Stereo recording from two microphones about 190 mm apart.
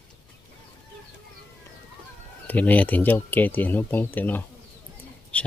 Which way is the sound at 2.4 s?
10° left (ahead or behind).